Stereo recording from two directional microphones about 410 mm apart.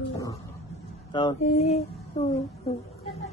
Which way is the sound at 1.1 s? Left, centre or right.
Centre.